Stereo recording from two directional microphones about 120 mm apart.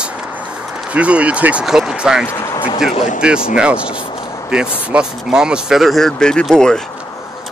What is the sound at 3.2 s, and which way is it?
Speech, 5° right (ahead or behind).